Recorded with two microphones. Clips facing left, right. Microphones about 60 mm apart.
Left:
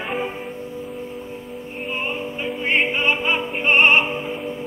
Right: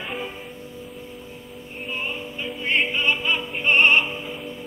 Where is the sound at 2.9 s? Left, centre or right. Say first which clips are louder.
Left 3 dB; left.